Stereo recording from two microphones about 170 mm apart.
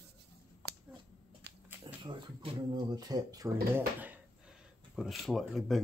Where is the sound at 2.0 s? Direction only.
30° right (ahead or behind).